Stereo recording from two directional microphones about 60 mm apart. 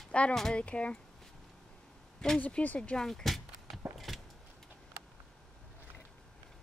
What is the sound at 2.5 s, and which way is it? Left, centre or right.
Speech, centre.